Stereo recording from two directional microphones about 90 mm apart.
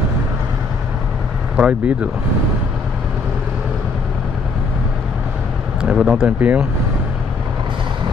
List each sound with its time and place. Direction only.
1.6 s speech: 10° right (ahead or behind)
5.8 s speech: 10° right (ahead or behind)